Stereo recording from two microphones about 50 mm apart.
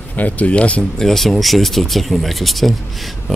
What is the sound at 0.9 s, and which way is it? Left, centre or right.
Speech, centre.